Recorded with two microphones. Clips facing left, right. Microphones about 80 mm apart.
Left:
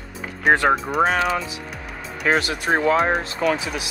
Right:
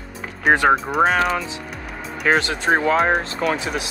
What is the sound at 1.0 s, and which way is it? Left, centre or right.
Speech, right.